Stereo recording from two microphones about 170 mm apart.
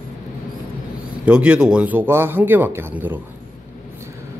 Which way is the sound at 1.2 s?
5° right (ahead or behind).